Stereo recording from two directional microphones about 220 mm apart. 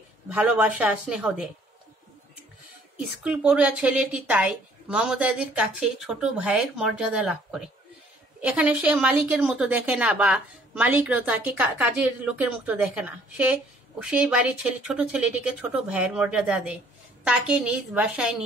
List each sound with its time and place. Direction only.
0.3 s a woman's voice: 5° right (ahead or behind)
3.0 s a woman's voice: 5° right (ahead or behind)